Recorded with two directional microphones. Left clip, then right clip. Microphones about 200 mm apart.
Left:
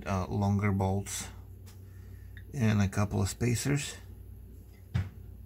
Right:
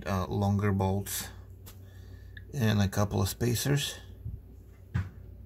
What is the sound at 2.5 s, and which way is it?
Speech, 20° right (ahead or behind).